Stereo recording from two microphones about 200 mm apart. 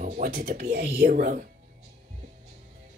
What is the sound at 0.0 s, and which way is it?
Speech, 45° right (ahead or behind).